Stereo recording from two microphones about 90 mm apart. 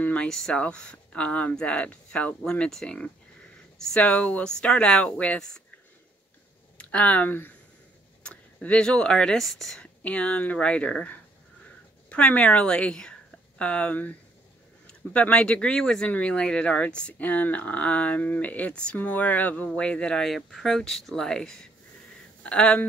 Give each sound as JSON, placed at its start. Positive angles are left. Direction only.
{"t": 0.0, "sound": "speech", "side_deg": 15}
{"t": 6.8, "sound": "speech", "side_deg": 15}
{"t": 8.2, "sound": "speech", "side_deg": 10}
{"t": 10.0, "sound": "speech", "side_deg": 15}